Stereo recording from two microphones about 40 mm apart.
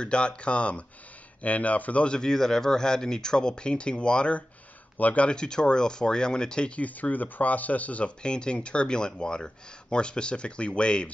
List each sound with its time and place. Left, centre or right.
0.0 s speech: left
2.0 s speech: centre; by 5.3 s left
5.3 s speech: left
6.8 s speech: left
8.2 s speech: left